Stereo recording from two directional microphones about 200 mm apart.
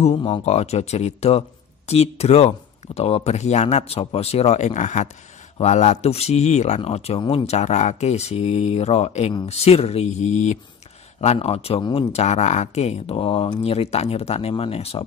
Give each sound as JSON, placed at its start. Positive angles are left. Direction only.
{"t": 0.0, "sound": "speech", "side_deg": 30}